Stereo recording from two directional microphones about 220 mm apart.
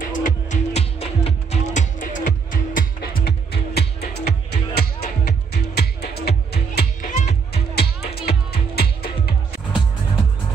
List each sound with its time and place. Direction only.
0.0 s music: 35° left (ahead or behind)